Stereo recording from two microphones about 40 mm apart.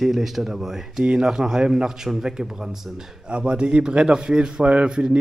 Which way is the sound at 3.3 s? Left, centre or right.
Right.